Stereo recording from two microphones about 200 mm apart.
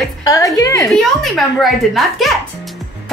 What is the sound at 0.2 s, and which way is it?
Speech, 15° left (ahead or behind).